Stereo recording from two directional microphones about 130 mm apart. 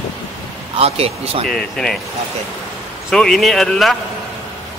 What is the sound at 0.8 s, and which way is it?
Speech, 50° right (ahead or behind).